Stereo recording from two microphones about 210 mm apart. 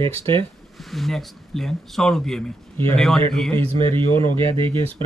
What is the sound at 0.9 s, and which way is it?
Speech, centre (ahead or behind).